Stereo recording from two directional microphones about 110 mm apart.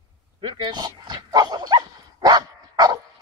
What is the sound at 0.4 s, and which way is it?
Dog, 45° right (ahead or behind).